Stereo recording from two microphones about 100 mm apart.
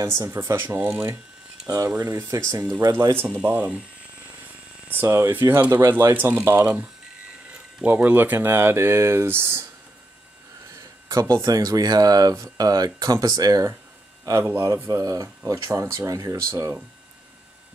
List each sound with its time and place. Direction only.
0.4 s speech: 20° right (ahead or behind)
2.0 s speech: 35° right (ahead or behind); by 3.8 s 15° right (ahead or behind)
4.8 s speech: 20° right (ahead or behind)
10.8 s a sound: 35° right (ahead or behind)
11.3 s speech: 35° right (ahead or behind)
14.2 s speech: 25° right (ahead or behind)